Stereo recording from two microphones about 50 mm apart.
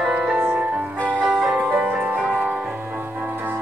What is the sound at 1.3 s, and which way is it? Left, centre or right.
Music, centre.